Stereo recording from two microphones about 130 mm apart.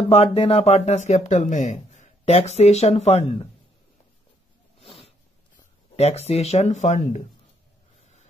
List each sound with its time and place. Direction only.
0.1 s speech: 50° left (ahead or behind)
4.7 s zipper: 45° left (ahead or behind)
5.9 s speech: 55° left (ahead or behind)